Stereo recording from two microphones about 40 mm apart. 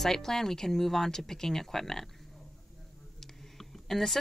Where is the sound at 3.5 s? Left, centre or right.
Centre.